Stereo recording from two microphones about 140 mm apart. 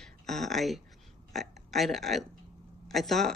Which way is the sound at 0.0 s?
5° left (ahead or behind).